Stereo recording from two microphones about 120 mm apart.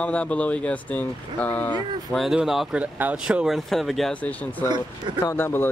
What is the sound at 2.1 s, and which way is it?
Speech, centre (ahead or behind).